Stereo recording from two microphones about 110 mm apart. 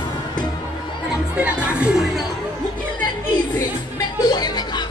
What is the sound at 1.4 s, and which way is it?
Crowd, 10° right (ahead or behind).